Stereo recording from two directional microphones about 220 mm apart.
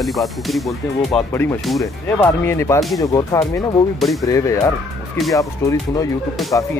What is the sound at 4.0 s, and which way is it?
Speech, centre (ahead or behind).